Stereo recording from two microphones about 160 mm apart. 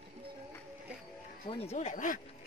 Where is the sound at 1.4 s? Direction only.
35° left (ahead or behind); by 2.2 s 55° left (ahead or behind).